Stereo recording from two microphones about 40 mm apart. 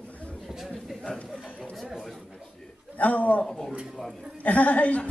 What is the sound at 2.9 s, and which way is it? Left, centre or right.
Speech, left.